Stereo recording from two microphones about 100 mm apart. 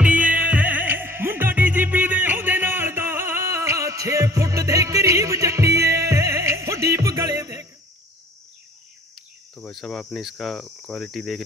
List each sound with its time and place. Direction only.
0.0 s music: 15° right (ahead or behind); by 7.6 s 30° right (ahead or behind)
9.6 s cricket: 5° left (ahead or behind)